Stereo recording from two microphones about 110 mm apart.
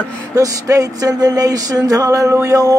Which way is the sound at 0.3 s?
30° right (ahead or behind).